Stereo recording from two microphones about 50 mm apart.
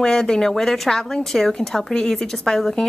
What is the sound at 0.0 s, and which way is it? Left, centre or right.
Speech, centre.